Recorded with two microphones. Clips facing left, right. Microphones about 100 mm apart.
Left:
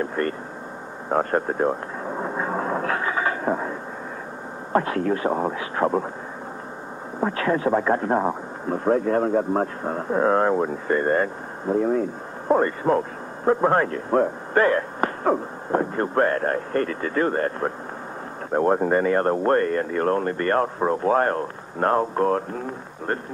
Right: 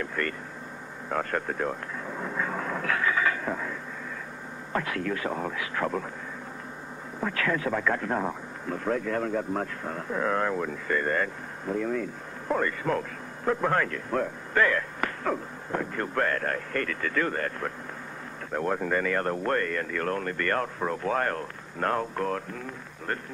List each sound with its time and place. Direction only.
0.0 s speech: 35° left (ahead or behind)
1.0 s vehicle: 35° left (ahead or behind)
4.7 s speech: 35° left (ahead or behind)
7.2 s speech: 30° left (ahead or behind)